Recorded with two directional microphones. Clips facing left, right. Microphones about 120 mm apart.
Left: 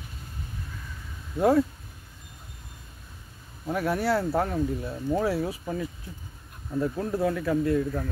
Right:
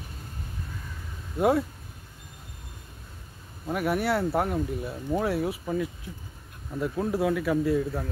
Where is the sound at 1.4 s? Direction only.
5° right (ahead or behind).